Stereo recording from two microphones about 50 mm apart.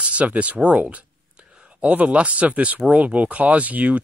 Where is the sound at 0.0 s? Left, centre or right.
Right.